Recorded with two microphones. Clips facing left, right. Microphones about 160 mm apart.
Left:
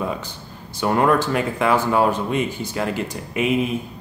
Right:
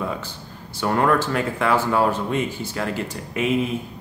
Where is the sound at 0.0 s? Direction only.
15° left (ahead or behind).